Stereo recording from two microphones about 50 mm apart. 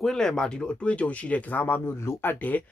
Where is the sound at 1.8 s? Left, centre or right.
Left.